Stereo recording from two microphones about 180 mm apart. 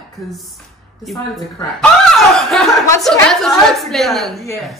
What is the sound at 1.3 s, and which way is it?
A woman's voice, centre (ahead or behind).